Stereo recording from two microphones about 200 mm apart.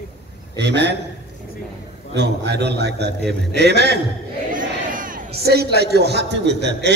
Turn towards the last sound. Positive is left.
turn(degrees=-60)  # may be behind; listen again after turning